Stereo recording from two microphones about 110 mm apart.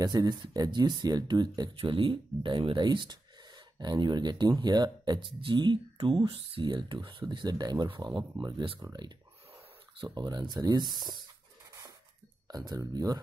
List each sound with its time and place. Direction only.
0.0 s speech: 35° right (ahead or behind); by 6.6 s 60° right (ahead or behind)
6.6 s speech: 50° right (ahead or behind)
9.9 s speech: 40° right (ahead or behind)
12.4 s speech: 35° right (ahead or behind)